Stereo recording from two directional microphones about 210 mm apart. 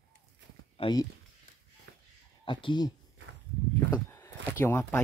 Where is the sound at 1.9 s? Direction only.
60° right (ahead or behind).